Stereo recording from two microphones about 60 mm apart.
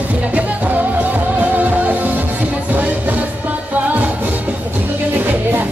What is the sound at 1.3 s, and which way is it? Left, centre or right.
Music, right.